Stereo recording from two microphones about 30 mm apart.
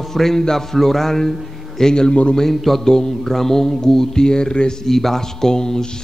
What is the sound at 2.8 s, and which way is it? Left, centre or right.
Speech, centre.